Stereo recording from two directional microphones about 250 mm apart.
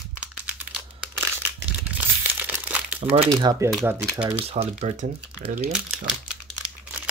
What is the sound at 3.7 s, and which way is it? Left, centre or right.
Speech, centre.